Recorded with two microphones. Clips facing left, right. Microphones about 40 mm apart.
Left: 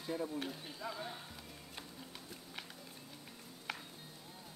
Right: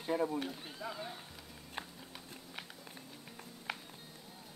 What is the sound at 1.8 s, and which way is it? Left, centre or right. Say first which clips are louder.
Music: right 8 dB; right.